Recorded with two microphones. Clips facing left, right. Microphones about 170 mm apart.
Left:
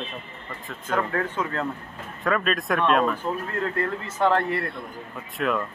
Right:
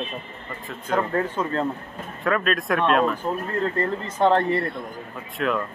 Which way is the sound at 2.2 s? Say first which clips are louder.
Right 1 dB; centre (ahead or behind).